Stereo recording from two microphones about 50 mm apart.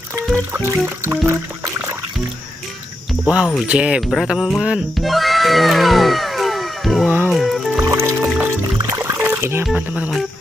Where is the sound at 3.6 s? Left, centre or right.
Right.